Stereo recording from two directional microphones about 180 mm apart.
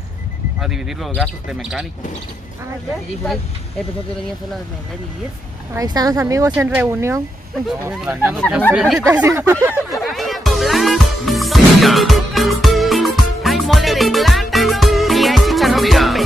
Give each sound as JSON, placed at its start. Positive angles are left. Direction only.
{"t": 0.6, "sound": "speech", "side_deg": 0}
{"t": 5.8, "sound": "speech", "side_deg": -20}
{"t": 9.0, "sound": "speech", "side_deg": -15}
{"t": 9.8, "sound": "music", "side_deg": 0}